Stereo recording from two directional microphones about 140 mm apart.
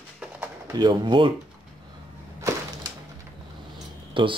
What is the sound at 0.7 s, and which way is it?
Speech, 35° right (ahead or behind).